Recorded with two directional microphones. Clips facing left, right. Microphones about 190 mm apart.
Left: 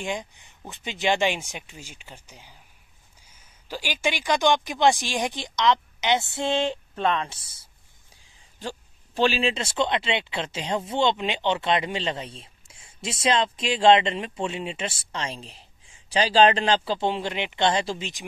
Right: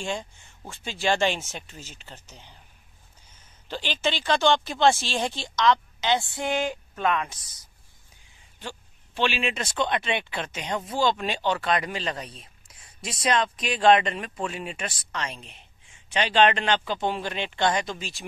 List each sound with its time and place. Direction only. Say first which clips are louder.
0.0 s a woman's voice: left 1 dB; 15° left (ahead or behind)